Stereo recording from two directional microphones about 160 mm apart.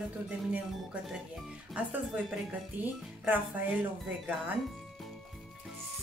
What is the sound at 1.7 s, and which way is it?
Speech, 10° right (ahead or behind).